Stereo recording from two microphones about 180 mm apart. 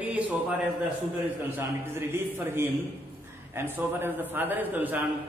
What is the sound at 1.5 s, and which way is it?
A man's voice, 15° right (ahead or behind).